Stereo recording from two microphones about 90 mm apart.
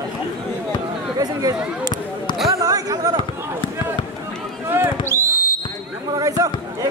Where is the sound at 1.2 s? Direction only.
45° right (ahead or behind).